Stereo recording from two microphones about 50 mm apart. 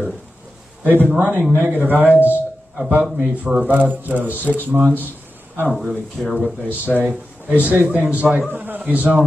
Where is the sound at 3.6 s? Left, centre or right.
Right.